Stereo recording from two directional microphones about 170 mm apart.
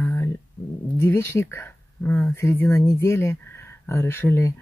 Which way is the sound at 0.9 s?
15° left (ahead or behind).